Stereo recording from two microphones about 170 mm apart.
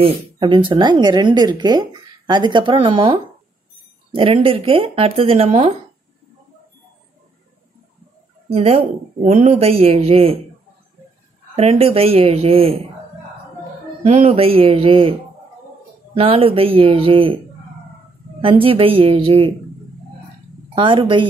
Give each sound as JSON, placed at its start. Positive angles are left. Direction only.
{"t": 0.0, "sound": "speech", "side_deg": -30}
{"t": 8.5, "sound": "speech", "side_deg": -35}
{"t": 11.5, "sound": "speech", "side_deg": -35}
{"t": 14.0, "sound": "speech", "side_deg": -40}
{"t": 16.2, "sound": "speech", "side_deg": -35}
{"t": 18.4, "sound": "speech", "side_deg": -30}
{"t": 20.7, "sound": "speech", "side_deg": -30}